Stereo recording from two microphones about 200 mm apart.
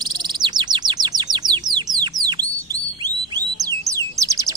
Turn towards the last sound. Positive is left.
turn(degrees=-15)  # may be behind; listen again after turning